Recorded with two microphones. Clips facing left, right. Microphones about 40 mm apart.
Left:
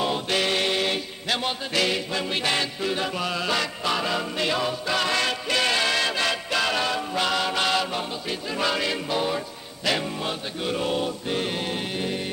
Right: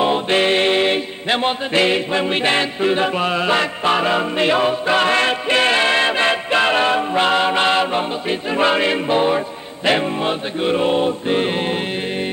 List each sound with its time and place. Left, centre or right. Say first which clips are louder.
0.0 s music: right 8 dB; right